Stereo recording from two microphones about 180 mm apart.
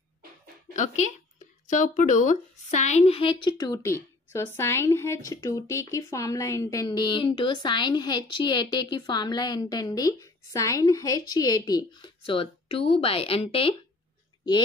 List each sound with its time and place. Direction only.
1.7 s speech: 45° left (ahead or behind)